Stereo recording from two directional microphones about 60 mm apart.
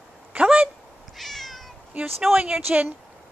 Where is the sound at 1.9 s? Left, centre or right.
Right.